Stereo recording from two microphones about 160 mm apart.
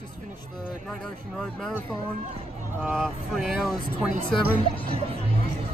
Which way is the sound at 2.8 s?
5° right (ahead or behind).